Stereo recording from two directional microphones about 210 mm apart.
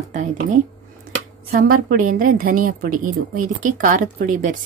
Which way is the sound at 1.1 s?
50° right (ahead or behind).